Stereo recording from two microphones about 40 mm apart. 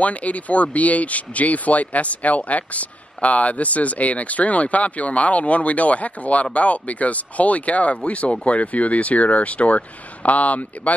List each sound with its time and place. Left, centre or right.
0.0 s speech: left